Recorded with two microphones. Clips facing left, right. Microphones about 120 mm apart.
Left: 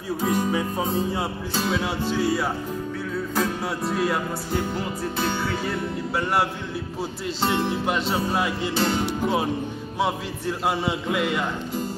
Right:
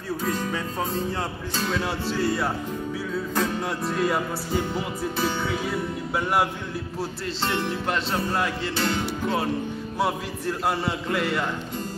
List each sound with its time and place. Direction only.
0.2 s music: 15° left (ahead or behind); by 6.4 s centre (ahead or behind)
7.4 s music: 15° left (ahead or behind)
8.7 s music: 20° left (ahead or behind)
9.9 s music: centre (ahead or behind)